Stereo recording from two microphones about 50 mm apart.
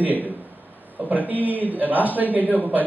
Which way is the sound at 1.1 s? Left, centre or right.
Right.